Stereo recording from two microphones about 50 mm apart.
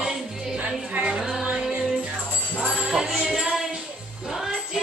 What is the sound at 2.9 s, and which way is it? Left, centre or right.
Music, centre.